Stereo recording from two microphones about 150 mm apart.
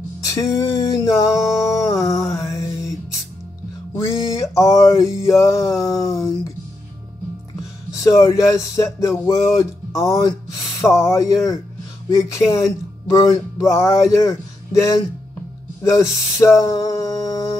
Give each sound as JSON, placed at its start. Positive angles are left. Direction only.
{"t": 0.2, "sound": "music", "side_deg": 25}
{"t": 3.9, "sound": "music", "side_deg": 20}
{"t": 8.0, "sound": "speech", "side_deg": 20}
{"t": 16.3, "sound": "speech", "side_deg": 20}